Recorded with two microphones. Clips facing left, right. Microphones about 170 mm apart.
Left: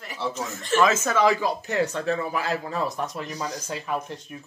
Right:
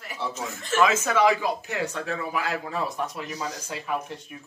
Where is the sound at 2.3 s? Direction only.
10° right (ahead or behind).